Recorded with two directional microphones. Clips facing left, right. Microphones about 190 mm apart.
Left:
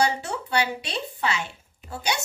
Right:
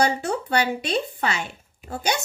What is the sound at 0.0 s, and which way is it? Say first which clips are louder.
A woman's voice: right 3 dB; 50° right (ahead or behind).